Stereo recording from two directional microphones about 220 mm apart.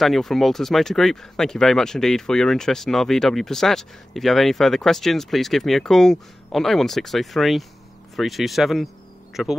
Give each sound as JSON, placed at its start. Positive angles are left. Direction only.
{"t": 0.0, "sound": "speech", "side_deg": 0}